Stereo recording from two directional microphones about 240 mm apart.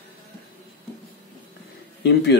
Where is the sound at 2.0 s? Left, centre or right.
Left.